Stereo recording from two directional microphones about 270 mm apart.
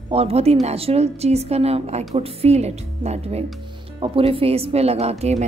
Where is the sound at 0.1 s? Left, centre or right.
Right.